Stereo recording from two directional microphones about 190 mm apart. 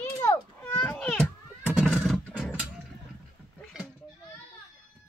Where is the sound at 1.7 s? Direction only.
5° right (ahead or behind).